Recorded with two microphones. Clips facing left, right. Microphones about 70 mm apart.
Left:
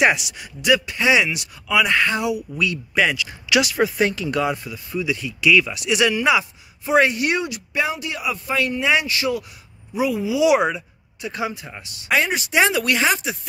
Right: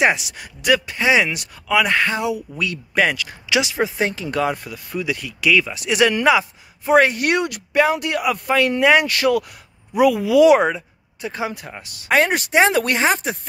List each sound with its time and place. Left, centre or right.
0.0 s speech: right
2.9 s speech: right
3.4 s speech: right
7.2 s speech: right
10.4 s speech: right
12.5 s speech: right